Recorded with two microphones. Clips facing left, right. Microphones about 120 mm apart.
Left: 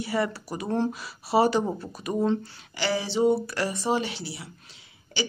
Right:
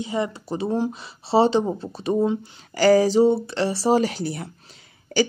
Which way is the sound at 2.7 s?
45° right (ahead or behind).